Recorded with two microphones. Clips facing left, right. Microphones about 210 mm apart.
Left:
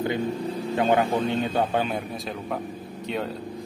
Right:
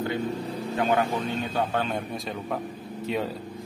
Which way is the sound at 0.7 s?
25° left (ahead or behind).